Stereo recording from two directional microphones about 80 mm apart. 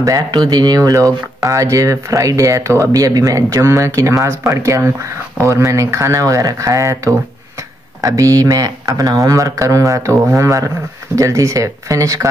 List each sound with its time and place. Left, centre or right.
0.3 s speech: right